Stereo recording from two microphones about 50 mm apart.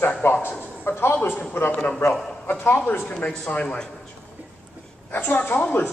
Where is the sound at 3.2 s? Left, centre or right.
Left.